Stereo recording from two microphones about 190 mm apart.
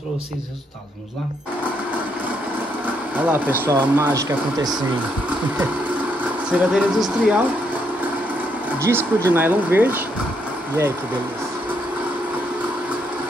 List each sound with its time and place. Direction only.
3.3 s speech: 10° right (ahead or behind)
6.5 s speech: 5° right (ahead or behind)
8.8 s speech: 15° right (ahead or behind)